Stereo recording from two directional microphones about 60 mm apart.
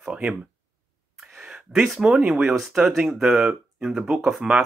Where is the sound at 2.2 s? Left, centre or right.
Right.